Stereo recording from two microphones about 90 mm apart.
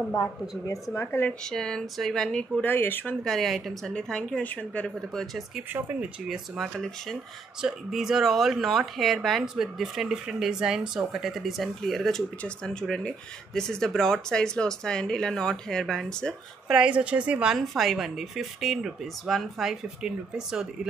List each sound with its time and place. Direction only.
0.2 s a woman's voice: 35° left (ahead or behind)
1.4 s speech: 5° left (ahead or behind)
2.6 s a woman's voice: 20° left (ahead or behind)
3.3 s speech: centre (ahead or behind)
5.1 s speech: centre (ahead or behind)
17.0 s a woman's voice: 15° right (ahead or behind)
17.6 s speech: centre (ahead or behind)